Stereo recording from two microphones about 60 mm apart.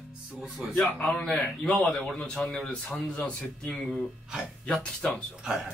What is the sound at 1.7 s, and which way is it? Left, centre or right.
Speech, centre.